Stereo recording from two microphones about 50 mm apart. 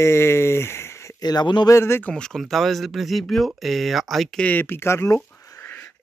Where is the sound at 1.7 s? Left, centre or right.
Left.